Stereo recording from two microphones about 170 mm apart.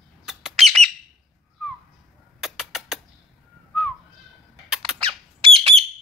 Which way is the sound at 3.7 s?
Centre (ahead or behind).